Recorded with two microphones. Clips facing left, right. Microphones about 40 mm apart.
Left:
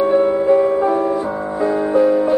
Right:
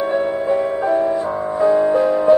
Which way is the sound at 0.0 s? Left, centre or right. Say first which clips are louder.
Left 5 dB; centre.